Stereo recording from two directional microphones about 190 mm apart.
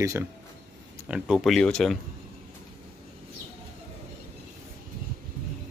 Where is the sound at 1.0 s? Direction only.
5° right (ahead or behind).